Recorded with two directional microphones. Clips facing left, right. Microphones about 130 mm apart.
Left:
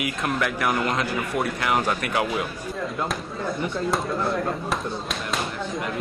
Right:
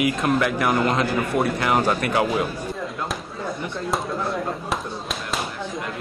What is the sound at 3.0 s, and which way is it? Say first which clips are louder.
Speech: left 1 dB; centre (ahead or behind).